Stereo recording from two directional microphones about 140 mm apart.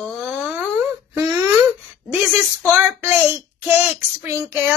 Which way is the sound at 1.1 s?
20° right (ahead or behind).